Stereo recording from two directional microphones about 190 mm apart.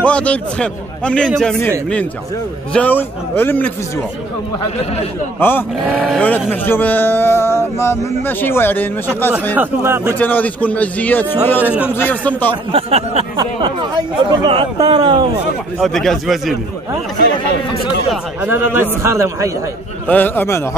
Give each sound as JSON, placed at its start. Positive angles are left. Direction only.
{"t": 0.0, "sound": "speech", "side_deg": 5}
{"t": 2.7, "sound": "speech", "side_deg": 10}
{"t": 5.4, "sound": "speech", "side_deg": 10}
{"t": 5.9, "sound": "speech", "side_deg": 0}
{"t": 9.6, "sound": "a man's voice", "side_deg": -10}
{"t": 10.1, "sound": "speech", "side_deg": 10}
{"t": 11.6, "sound": "a man's voice", "side_deg": -10}
{"t": 11.9, "sound": "speech", "side_deg": 10}
{"t": 12.7, "sound": "speech", "side_deg": -30}
{"t": 15.8, "sound": "speech", "side_deg": 0}
{"t": 18.1, "sound": "a man's voice", "side_deg": -10}
{"t": 20.1, "sound": "speech", "side_deg": 10}